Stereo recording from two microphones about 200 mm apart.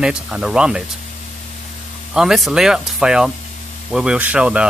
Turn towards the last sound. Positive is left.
turn(degrees=-5)  # may be behind; listen again after turning